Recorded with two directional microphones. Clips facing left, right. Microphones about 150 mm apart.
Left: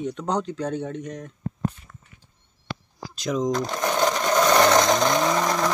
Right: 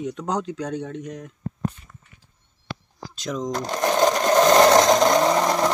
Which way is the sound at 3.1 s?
Centre (ahead or behind).